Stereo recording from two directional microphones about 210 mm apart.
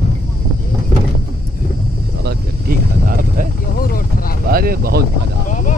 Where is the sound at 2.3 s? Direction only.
45° right (ahead or behind).